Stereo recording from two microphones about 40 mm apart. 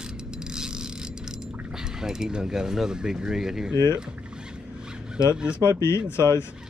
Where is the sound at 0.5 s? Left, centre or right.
Centre.